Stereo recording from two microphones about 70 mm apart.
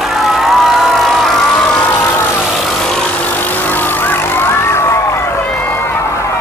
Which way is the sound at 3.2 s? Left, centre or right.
Left.